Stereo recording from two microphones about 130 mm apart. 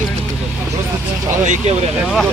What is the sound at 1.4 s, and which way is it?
Speech, 70° right (ahead or behind).